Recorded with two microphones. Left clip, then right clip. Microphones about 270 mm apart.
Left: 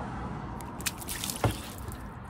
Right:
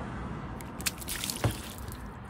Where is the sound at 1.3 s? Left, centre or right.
Left.